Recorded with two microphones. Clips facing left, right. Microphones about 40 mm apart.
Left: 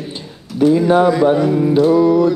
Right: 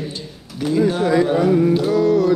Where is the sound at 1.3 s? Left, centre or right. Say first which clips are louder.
Left 1 dB; centre.